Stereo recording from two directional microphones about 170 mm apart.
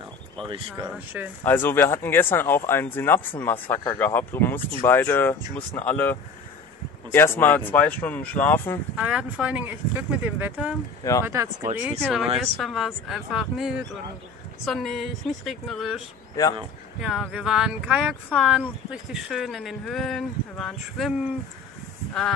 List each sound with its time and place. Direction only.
0.5 s speech: 25° right (ahead or behind)
0.9 s speech: 10° right (ahead or behind)
1.4 s speech: 10° left (ahead or behind)
9.0 s speech: 5° right (ahead or behind)
12.0 s speech: centre (ahead or behind)
17.0 s speech: centre (ahead or behind)